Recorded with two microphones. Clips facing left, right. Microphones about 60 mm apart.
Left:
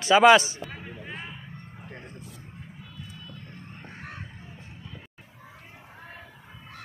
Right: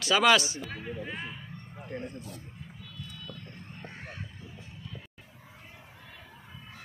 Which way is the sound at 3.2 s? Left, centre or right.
Left.